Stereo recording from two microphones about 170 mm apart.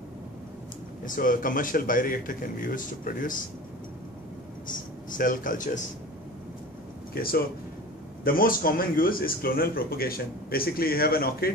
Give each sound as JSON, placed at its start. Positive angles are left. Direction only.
{"t": 1.0, "sound": "speech", "side_deg": 50}
{"t": 4.6, "sound": "speech", "side_deg": 50}
{"t": 7.2, "sound": "a man's voice", "side_deg": 60}